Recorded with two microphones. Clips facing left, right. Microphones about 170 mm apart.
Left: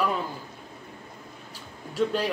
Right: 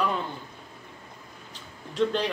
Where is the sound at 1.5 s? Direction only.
5° left (ahead or behind).